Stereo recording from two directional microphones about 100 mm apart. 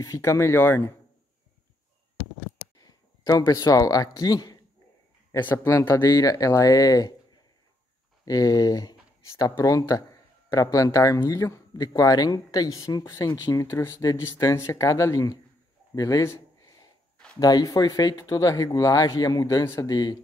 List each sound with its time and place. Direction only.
0.0 s speech: 35° left (ahead or behind)
2.8 s speech: 40° left (ahead or behind)
5.4 s speech: 25° left (ahead or behind)
8.3 s speech: 35° left (ahead or behind)
17.4 s speech: 40° left (ahead or behind)